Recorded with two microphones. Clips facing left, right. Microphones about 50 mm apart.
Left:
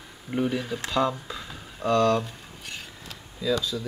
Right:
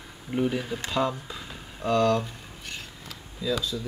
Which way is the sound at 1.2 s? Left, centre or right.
Centre.